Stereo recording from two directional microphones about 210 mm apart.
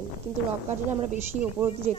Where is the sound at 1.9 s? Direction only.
35° right (ahead or behind).